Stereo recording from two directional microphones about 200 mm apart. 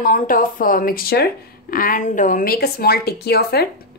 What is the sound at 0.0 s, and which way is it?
Speech, 45° left (ahead or behind).